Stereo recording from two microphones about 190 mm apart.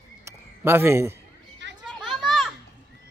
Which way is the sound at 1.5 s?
70° right (ahead or behind).